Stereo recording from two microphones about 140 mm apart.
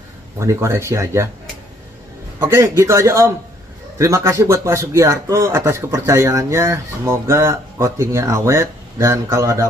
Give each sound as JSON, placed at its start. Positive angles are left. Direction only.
{"t": 0.4, "sound": "speech", "side_deg": -20}
{"t": 2.3, "sound": "speech", "side_deg": -20}